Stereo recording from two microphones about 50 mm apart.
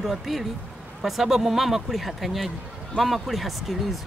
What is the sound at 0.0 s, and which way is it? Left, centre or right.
Speech, centre.